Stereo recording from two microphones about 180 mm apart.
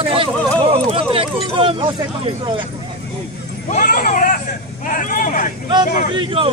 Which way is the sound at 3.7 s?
50° left (ahead or behind).